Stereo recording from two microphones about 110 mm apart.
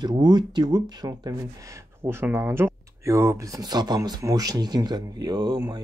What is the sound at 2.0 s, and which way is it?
Speech, 20° right (ahead or behind).